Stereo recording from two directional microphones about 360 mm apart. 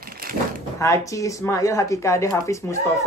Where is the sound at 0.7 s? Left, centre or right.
Centre.